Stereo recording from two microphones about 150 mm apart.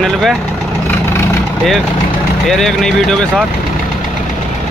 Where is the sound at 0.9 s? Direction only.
15° left (ahead or behind).